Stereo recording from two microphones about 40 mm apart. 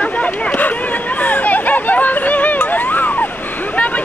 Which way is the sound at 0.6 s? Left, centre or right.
Left.